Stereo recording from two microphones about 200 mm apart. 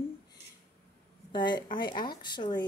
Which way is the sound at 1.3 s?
20° left (ahead or behind).